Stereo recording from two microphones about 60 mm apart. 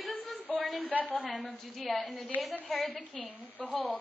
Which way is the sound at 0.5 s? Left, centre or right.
Centre.